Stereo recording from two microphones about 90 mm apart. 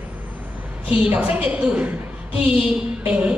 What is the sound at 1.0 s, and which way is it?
Speech, 15° right (ahead or behind).